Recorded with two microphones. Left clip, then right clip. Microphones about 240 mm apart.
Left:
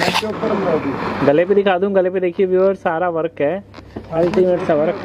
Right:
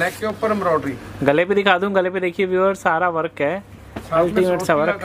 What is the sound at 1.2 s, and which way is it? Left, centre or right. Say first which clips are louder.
Speech: left 2 dB; centre.